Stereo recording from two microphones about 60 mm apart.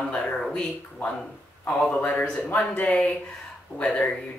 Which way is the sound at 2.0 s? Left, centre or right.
Left.